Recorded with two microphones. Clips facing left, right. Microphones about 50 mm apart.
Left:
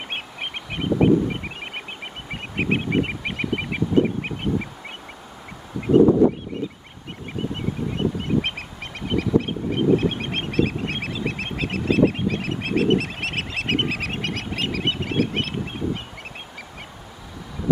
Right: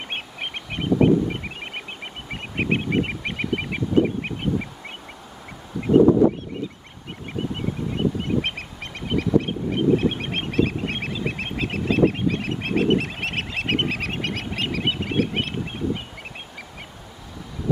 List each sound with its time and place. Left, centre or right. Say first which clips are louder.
0.1 s goose: even; centre
2.3 s a sound: even; centre
6.5 s goose: left 2 dB; centre